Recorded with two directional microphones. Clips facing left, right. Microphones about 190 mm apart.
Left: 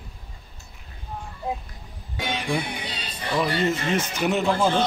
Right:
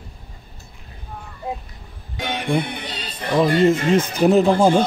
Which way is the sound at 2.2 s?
60° right (ahead or behind).